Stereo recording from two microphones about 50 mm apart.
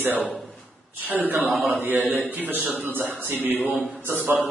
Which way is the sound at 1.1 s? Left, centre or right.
Right.